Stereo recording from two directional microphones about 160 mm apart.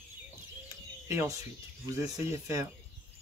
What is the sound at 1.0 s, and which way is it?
Speech, 20° right (ahead or behind).